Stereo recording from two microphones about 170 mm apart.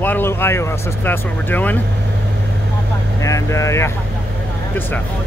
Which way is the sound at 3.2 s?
20° left (ahead or behind).